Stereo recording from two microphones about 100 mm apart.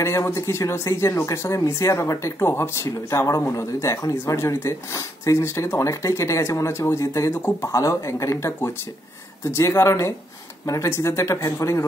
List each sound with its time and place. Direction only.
0.0 s speech: 30° left (ahead or behind)